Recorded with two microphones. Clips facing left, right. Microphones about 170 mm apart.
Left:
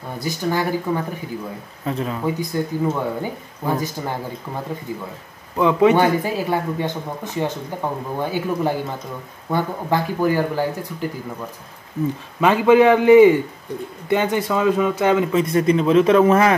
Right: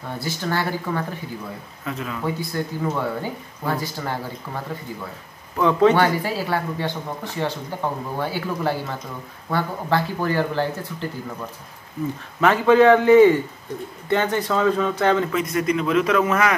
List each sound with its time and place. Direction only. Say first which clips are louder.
0.2 s speech: left 4 dB; 15° left (ahead or behind)
1.9 s speech: left 5 dB; 30° left (ahead or behind)
2.2 s speech: left 1 dB; 15° left (ahead or behind)
5.6 s speech: left 2 dB; 15° left (ahead or behind)
12.4 s speech: left 2 dB; 15° left (ahead or behind)
15.3 s speech: left 5 dB; 30° left (ahead or behind)